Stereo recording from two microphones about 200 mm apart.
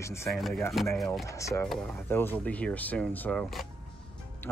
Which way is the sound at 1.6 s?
5° left (ahead or behind).